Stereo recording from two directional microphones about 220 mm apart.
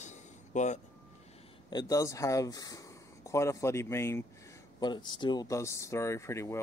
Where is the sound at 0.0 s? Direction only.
35° left (ahead or behind).